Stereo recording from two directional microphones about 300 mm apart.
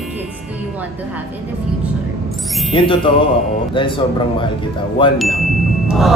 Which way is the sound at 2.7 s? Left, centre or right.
Centre.